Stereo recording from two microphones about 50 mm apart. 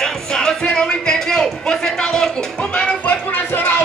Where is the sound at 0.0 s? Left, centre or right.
Centre.